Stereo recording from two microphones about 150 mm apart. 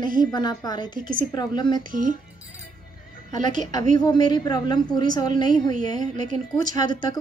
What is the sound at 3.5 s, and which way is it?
A woman's voice, 30° left (ahead or behind).